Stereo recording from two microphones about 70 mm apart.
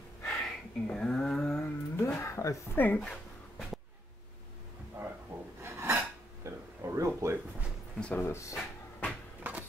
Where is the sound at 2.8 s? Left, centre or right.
Left.